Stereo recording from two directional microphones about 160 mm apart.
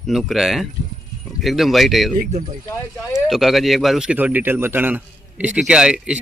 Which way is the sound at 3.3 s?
Centre (ahead or behind).